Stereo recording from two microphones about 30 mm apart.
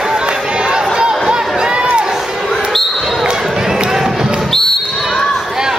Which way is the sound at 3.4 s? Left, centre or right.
Centre.